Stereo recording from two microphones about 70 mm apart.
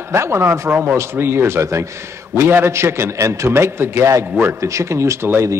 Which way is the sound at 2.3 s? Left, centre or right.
Right.